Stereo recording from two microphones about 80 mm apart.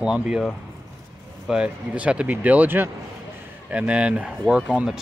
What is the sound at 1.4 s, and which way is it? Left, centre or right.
Speech, centre.